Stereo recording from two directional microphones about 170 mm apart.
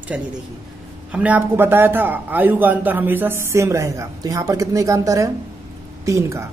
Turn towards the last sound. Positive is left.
turn(degrees=-20)  # may be behind; listen again after turning